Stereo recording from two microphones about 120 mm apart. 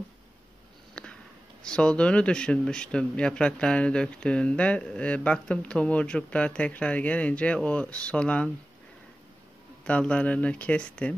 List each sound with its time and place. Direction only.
1.0 s a sound: 5° left (ahead or behind)
1.6 s speech: 5° left (ahead or behind)
9.8 s speech: 10° left (ahead or behind)